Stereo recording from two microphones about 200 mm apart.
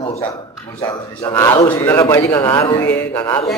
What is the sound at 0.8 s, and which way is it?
A man's voice, 15° left (ahead or behind).